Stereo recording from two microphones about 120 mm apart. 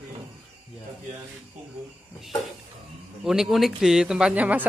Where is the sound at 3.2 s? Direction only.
5° right (ahead or behind).